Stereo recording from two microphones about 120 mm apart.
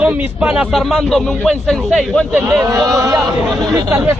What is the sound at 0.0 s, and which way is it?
Speech, 10° right (ahead or behind).